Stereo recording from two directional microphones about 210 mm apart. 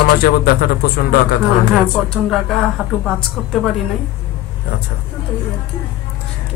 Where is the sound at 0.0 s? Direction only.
45° left (ahead or behind).